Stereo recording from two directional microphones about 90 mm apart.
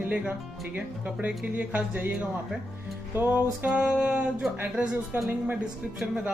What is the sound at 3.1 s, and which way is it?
Music, 20° right (ahead or behind).